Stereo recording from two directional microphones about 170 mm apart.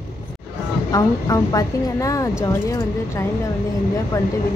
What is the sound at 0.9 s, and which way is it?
Speech, 20° left (ahead or behind).